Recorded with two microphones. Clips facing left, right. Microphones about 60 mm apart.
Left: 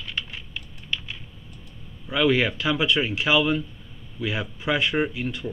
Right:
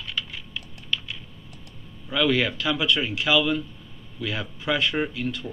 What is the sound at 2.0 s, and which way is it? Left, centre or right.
Speech, centre.